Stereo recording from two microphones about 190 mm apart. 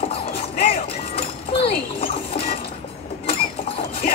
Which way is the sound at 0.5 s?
55° left (ahead or behind).